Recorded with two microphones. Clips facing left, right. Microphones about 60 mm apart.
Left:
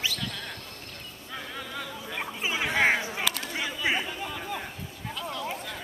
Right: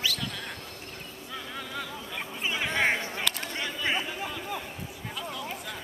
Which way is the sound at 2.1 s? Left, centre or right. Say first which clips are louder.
Left 2 dB; centre.